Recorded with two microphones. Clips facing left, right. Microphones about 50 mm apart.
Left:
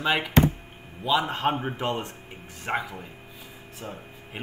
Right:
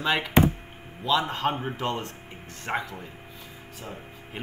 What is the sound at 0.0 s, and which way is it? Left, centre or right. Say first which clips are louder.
Speech: left 1 dB; centre.